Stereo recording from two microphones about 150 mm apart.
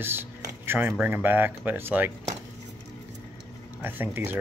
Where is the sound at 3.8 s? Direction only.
15° right (ahead or behind).